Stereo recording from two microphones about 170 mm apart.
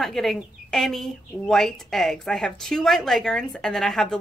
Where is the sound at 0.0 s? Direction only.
Centre (ahead or behind).